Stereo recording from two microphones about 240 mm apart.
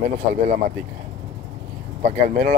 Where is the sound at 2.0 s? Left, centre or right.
Right.